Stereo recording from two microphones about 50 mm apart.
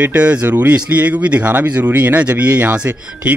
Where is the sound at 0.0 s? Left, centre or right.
Right.